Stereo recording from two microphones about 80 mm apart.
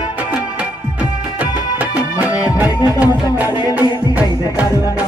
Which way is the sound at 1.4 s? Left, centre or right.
Centre.